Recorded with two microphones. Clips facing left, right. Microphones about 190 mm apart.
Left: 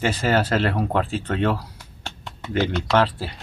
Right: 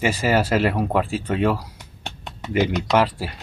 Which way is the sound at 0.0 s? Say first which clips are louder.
Right 1 dB; 10° right (ahead or behind).